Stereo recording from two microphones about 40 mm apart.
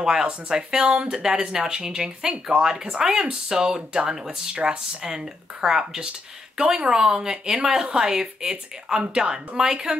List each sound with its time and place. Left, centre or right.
0.0 s speech: centre